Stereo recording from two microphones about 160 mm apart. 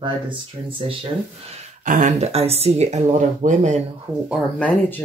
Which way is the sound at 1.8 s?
50° right (ahead or behind).